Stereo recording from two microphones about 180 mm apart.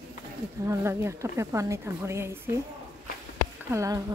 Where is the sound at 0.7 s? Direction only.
15° right (ahead or behind).